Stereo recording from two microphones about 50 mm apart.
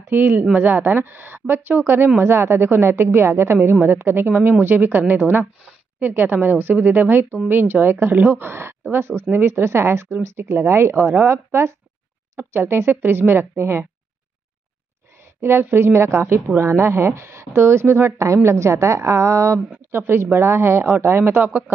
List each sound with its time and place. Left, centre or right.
0.1 s a woman's voice: right
15.4 s speech: right
18.1 s a woman's voice: right
19.9 s speech: right